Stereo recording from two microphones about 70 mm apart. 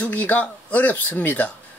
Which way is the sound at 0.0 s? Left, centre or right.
Left.